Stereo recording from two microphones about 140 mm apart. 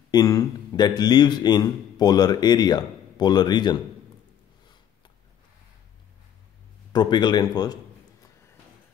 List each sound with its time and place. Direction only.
0.1 s a man's voice: 25° left (ahead or behind)
6.9 s a man's voice: 30° left (ahead or behind)